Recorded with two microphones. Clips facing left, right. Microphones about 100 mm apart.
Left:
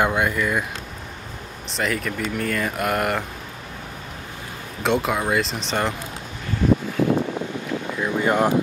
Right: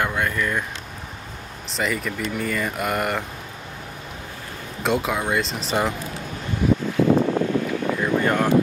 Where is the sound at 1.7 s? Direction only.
Centre (ahead or behind).